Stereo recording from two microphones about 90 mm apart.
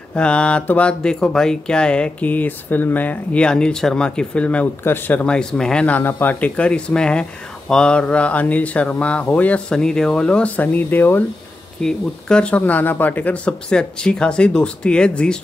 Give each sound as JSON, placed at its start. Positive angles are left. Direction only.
{"t": 0.1, "sound": "speech", "side_deg": 10}
{"t": 5.2, "sound": "speech", "side_deg": 10}
{"t": 11.8, "sound": "speech", "side_deg": 10}